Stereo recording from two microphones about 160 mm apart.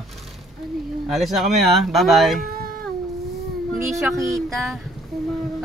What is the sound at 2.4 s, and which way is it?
Baby cry, 65° right (ahead or behind).